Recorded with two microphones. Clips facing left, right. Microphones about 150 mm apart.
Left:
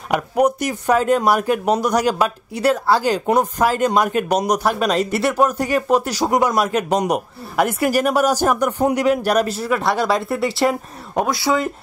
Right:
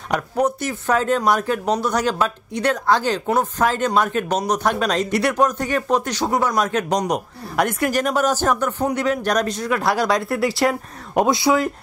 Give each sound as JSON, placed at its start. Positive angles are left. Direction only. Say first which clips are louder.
{"t": 0.1, "sound": "speech", "louder": "left 3 dB", "side_deg": 10}
{"t": 11.1, "sound": "speech", "louder": "right 3 dB", "side_deg": -15}